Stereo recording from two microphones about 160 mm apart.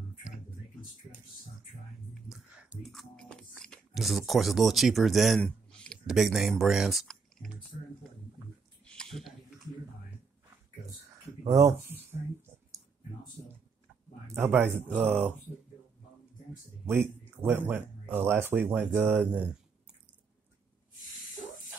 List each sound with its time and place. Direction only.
2.2 s speech: centre (ahead or behind)
8.8 s chewing: 5° left (ahead or behind)
11.4 s a sound: 20° right (ahead or behind)
14.2 s speech: 15° right (ahead or behind)
17.4 s speech: 10° right (ahead or behind)